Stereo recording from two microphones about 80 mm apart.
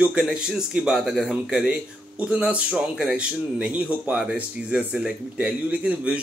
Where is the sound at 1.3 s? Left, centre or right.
Centre.